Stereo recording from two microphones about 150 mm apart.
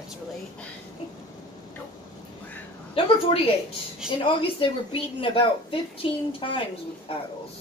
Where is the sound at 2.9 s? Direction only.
40° left (ahead or behind).